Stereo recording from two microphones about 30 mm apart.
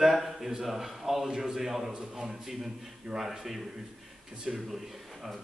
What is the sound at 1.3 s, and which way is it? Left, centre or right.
Speech, right.